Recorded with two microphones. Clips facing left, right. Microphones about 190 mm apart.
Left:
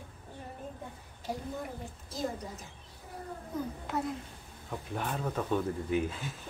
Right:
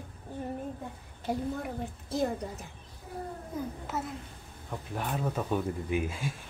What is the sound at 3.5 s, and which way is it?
A woman's voice, 10° right (ahead or behind).